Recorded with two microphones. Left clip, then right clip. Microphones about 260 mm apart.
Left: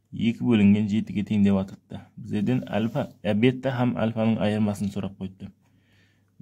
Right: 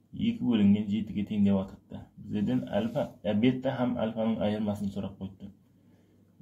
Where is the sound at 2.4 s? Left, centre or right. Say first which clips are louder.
Left 3 dB; left.